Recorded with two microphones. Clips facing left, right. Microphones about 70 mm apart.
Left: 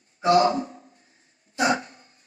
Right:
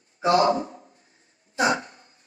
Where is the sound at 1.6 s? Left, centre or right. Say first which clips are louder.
Even; right.